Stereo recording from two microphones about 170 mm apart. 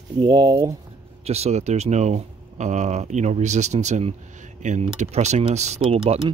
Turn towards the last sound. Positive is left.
turn(degrees=-35)  # may be behind; listen again after turning